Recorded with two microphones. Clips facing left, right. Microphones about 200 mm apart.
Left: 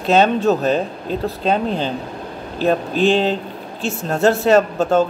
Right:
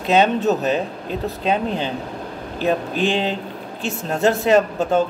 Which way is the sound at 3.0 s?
15° right (ahead or behind).